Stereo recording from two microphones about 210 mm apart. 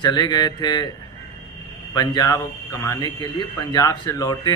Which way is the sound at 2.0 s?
20° left (ahead or behind).